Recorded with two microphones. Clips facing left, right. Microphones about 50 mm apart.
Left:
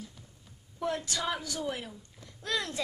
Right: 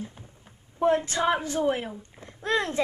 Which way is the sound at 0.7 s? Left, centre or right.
Right.